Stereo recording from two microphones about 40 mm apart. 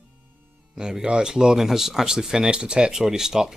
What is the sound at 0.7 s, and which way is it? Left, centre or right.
Speech, centre.